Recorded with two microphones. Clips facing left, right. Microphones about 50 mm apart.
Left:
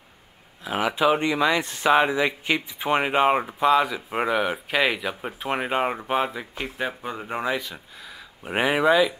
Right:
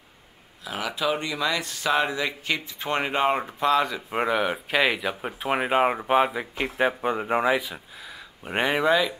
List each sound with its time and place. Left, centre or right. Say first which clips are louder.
0.7 s speech: left 6 dB; left; by 7.8 s centre
8.5 s speech: left 2 dB; centre